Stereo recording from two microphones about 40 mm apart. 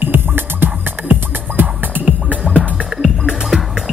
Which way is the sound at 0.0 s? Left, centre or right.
Right.